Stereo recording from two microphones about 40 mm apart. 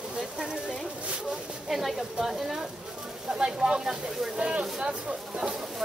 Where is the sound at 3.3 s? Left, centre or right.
Centre.